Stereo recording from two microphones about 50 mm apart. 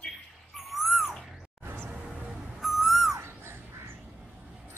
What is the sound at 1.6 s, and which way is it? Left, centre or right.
Music, right.